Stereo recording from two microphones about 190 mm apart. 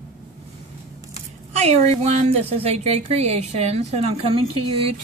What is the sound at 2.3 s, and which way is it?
A woman's voice, 35° right (ahead or behind).